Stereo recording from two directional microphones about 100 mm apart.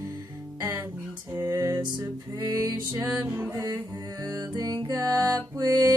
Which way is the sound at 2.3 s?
40° right (ahead or behind).